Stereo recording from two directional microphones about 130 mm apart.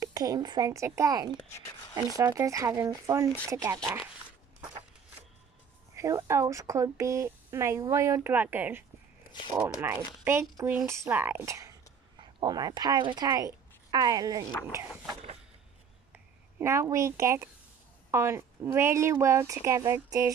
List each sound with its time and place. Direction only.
0.0 s speech: 30° right (ahead or behind)
1.3 s a child's voice: 25° left (ahead or behind)
2.1 s speech: 25° right (ahead or behind)
5.9 s speech: 25° right (ahead or behind)
12.2 s speech: 35° right (ahead or behind)
16.1 s speech: 15° right (ahead or behind)